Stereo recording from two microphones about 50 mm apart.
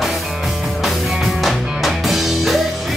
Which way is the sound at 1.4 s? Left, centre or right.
Centre.